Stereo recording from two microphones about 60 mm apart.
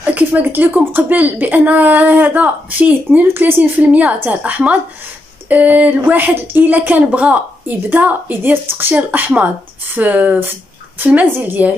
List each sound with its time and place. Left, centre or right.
0.0 s speech: right
8.9 s a woman's voice: right